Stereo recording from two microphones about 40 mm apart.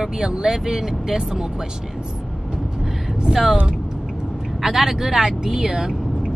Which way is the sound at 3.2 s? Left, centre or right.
Centre.